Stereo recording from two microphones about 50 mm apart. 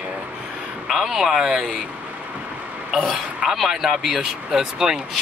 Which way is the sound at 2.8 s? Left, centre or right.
Centre.